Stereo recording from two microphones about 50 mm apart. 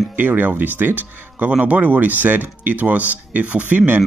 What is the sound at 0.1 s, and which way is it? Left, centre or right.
Speech, right.